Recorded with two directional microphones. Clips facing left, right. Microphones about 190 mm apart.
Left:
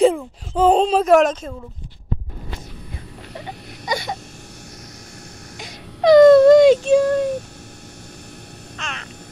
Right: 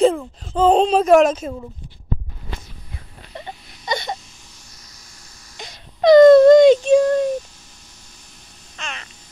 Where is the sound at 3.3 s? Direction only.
10° left (ahead or behind).